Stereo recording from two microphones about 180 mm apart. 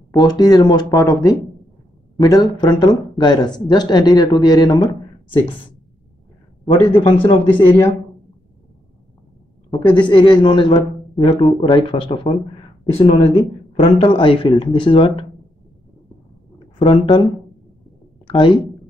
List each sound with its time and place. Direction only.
0.2 s speech: 20° left (ahead or behind)
6.7 s speech: 30° left (ahead or behind)
9.9 s speech: 25° left (ahead or behind)
16.7 s speech: 30° left (ahead or behind)
18.2 s a sound: 25° left (ahead or behind)